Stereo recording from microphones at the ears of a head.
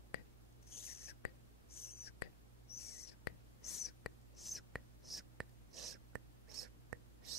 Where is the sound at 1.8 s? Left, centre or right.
Left.